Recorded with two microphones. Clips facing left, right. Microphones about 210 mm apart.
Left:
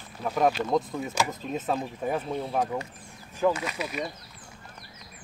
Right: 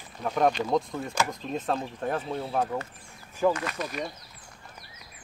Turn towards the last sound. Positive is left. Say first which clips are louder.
# even
turn(degrees=5)  # may be behind; listen again after turning